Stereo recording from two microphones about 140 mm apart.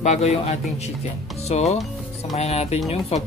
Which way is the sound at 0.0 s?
55° left (ahead or behind).